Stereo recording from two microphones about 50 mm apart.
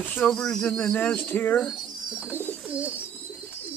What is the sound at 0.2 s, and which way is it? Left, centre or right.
Speech, centre.